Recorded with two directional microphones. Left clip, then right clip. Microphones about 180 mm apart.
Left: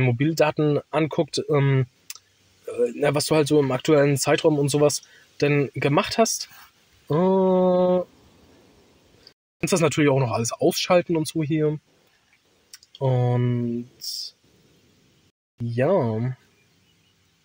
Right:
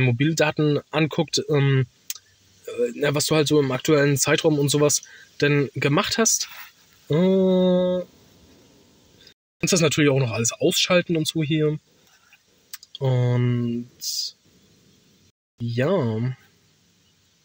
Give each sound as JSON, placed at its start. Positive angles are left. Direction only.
{"t": 0.0, "sound": "speech", "side_deg": -15}
{"t": 7.1, "sound": "mantra", "side_deg": -20}
{"t": 9.6, "sound": "speech", "side_deg": -15}
{"t": 12.8, "sound": "speech", "side_deg": -15}
{"t": 15.7, "sound": "speech", "side_deg": -15}